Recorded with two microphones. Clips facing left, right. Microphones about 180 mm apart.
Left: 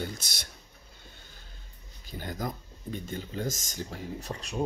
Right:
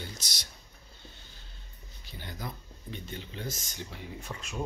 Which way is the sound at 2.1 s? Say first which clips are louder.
Left 6 dB; 45° left (ahead or behind).